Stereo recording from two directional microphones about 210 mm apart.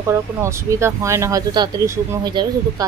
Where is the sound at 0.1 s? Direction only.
15° right (ahead or behind).